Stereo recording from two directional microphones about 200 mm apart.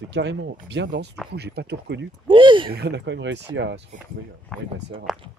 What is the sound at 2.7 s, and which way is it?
Speech, 60° right (ahead or behind).